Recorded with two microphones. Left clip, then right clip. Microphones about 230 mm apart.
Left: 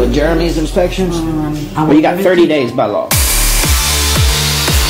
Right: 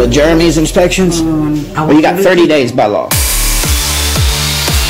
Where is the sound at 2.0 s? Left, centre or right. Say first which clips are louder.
Right 3 dB; right.